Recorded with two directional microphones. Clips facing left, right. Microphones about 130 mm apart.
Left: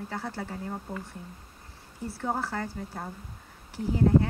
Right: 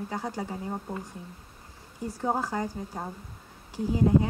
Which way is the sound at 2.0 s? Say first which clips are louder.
Right 2 dB; 15° right (ahead or behind).